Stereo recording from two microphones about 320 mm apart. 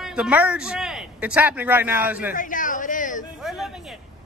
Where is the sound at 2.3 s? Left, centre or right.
Left.